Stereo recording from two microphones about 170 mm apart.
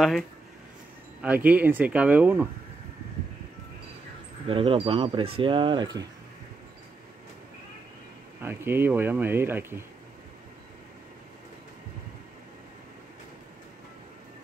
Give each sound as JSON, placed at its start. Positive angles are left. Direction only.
{"t": 1.2, "sound": "speech", "side_deg": -10}
{"t": 4.5, "sound": "speech", "side_deg": -30}
{"t": 8.4, "sound": "speech", "side_deg": -15}